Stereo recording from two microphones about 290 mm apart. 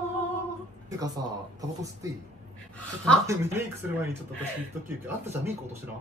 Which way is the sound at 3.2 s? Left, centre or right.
Centre.